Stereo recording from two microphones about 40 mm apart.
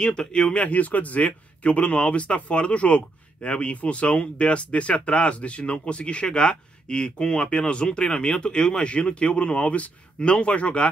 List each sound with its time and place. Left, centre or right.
0.0 s speech: left
0.7 s speech: left